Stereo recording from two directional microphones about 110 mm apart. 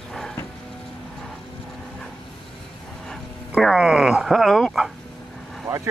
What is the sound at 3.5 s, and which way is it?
Speech, 5° right (ahead or behind).